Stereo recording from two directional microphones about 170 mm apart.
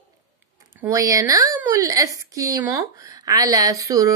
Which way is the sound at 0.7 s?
20° right (ahead or behind).